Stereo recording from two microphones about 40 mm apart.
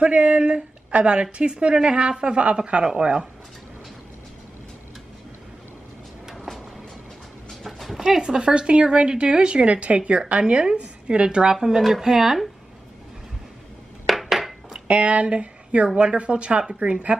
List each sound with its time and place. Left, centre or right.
0.0 s speech: right
6.3 s music: centre
7.6 s a sound: centre
8.2 s speech: right
10.5 s a woman's voice: right
14.0 s dishes: centre
14.9 s speech: right